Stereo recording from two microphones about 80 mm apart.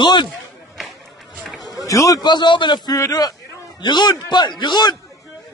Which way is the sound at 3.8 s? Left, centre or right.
Left.